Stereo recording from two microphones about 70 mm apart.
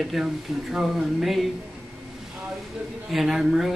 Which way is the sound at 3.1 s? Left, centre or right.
Centre.